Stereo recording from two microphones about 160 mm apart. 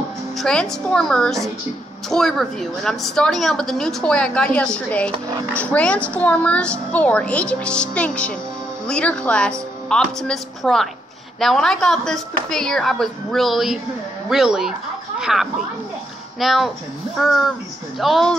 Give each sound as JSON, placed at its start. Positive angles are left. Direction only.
{"t": 0.4, "sound": "a woman's voice", "side_deg": 5}